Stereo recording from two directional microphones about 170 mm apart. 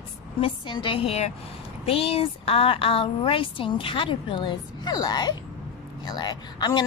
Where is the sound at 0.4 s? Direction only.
30° left (ahead or behind).